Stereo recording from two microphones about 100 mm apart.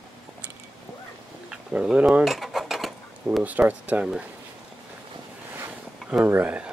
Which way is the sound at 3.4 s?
15° right (ahead or behind).